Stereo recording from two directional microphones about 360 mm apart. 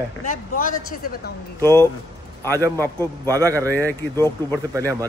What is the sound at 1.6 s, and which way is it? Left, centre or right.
Speech, centre.